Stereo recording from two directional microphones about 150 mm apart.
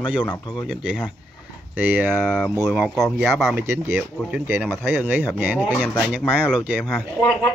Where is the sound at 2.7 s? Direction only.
Centre (ahead or behind).